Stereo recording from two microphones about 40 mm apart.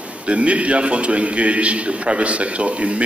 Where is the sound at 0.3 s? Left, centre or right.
Right.